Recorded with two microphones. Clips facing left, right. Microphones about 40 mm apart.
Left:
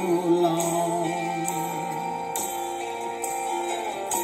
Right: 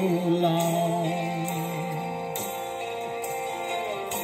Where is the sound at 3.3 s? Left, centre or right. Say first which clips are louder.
Left 6 dB; right.